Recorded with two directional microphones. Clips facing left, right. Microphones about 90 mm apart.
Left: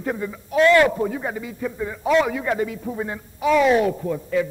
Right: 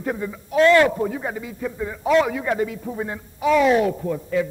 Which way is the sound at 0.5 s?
25° right (ahead or behind).